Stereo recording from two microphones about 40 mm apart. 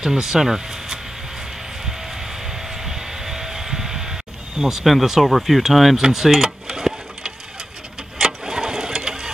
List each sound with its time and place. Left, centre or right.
0.0 s speech: centre
1.9 s music: centre
5.2 s speech: centre
8.2 s engine: centre